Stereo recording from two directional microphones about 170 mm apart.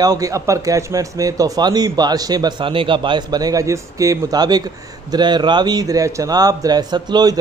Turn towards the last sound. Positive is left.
turn(degrees=-25)  # may be behind; listen again after turning